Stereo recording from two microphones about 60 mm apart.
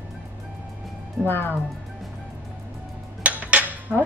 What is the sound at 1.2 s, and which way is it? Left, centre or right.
Speech, left.